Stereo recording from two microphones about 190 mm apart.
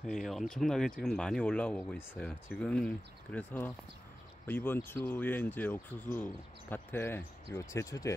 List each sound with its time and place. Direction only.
0.0 s speech: centre (ahead or behind); by 8.1 s 15° left (ahead or behind)